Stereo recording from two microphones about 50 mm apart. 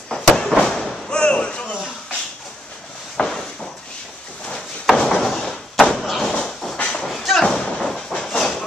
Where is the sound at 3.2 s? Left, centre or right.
Left.